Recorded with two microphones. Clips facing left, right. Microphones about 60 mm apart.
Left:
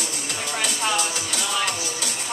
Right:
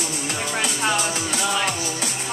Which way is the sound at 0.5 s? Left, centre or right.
Right.